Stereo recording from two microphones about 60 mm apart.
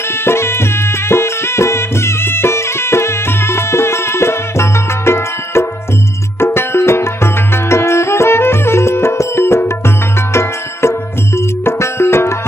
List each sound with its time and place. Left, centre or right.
0.2 s music: left